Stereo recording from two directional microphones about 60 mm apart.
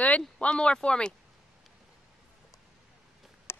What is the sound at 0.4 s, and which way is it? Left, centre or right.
Speech, centre.